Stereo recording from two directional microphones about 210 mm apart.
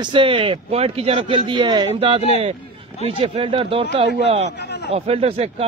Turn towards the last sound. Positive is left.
turn(degrees=-30)  # may be behind; listen again after turning